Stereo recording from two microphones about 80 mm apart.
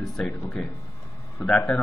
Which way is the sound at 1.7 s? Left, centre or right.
Centre.